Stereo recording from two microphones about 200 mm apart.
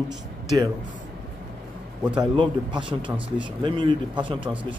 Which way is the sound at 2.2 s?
25° right (ahead or behind).